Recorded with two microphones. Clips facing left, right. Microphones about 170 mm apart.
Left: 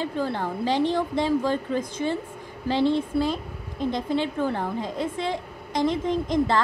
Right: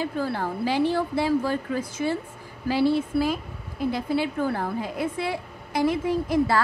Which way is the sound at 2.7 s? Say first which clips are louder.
Even; 10° right (ahead or behind).